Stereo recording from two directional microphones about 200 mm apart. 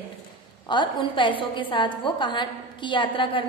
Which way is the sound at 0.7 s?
25° left (ahead or behind).